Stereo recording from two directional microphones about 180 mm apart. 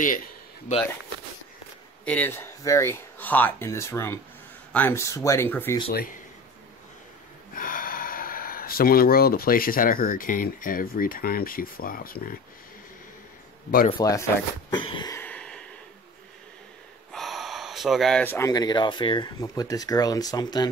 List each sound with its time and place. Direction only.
0.0 s speech: 50° left (ahead or behind)
2.0 s speech: 10° left (ahead or behind)
5.9 s speech: 55° left (ahead or behind)
7.5 s speech: 50° left (ahead or behind)
13.8 s speech: 30° left (ahead or behind)
15.1 s a sound: 5° left (ahead or behind)
17.1 s speech: centre (ahead or behind); by 20.7 s 20° left (ahead or behind)